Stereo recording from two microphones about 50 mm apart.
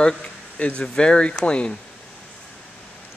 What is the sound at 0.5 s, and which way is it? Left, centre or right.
Speech, left.